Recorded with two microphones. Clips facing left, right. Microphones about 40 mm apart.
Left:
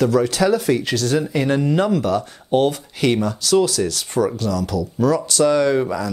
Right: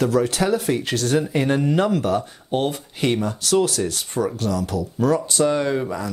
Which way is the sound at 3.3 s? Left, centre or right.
Left.